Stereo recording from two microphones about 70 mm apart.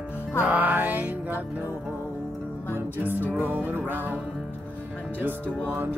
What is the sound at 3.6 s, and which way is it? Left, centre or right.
Music, right.